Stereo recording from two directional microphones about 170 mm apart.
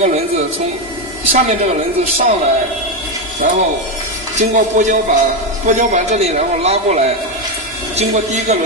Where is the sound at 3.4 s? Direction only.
50° right (ahead or behind).